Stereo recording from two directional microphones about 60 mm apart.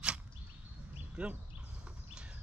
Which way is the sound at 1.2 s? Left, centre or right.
Centre.